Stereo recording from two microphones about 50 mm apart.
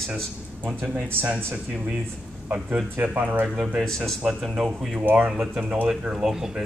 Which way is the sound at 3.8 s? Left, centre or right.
Centre.